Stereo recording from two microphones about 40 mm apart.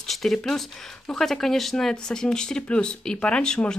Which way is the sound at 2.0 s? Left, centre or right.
Centre.